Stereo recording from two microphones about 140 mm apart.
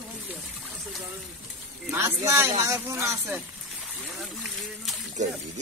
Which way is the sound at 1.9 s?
20° right (ahead or behind).